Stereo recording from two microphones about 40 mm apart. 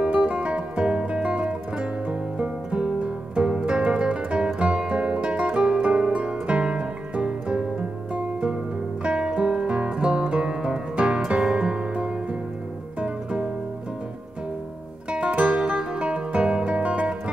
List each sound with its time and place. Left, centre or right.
0.0 s music: right
15.0 s music: right